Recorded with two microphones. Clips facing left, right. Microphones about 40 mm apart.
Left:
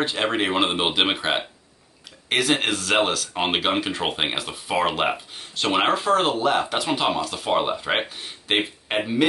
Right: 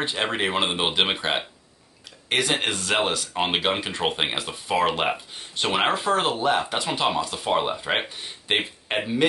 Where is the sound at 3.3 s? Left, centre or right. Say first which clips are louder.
Left 1 dB; centre.